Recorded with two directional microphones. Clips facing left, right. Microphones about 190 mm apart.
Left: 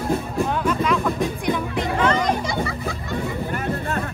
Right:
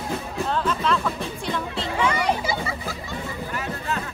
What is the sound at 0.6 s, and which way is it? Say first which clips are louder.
Music: left 3 dB; 10° left (ahead or behind).